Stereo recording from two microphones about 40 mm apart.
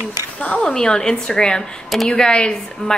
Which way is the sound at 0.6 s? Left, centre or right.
Centre.